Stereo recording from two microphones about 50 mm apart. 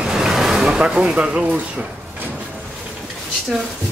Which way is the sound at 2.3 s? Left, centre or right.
Right.